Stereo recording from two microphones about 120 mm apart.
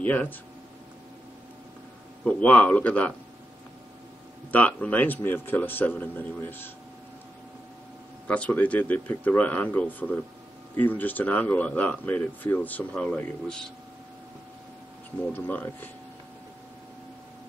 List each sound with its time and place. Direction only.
0.0 s speech: 15° left (ahead or behind)
2.2 s speech: 10° left (ahead or behind)
4.5 s speech: 10° left (ahead or behind)
8.3 s speech: 10° left (ahead or behind)
15.3 s speech: 15° left (ahead or behind)